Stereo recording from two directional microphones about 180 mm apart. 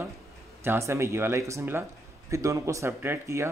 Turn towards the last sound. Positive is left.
turn(degrees=-15)  # may be behind; listen again after turning